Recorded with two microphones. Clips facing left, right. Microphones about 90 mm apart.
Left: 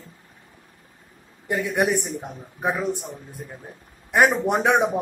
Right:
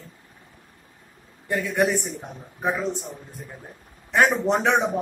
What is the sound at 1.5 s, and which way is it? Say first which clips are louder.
A man's voice: even; 15° left (ahead or behind).